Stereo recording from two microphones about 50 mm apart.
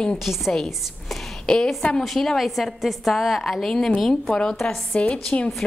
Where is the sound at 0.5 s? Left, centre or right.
Centre.